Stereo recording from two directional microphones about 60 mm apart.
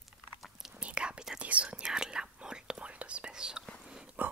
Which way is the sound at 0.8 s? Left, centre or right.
Centre.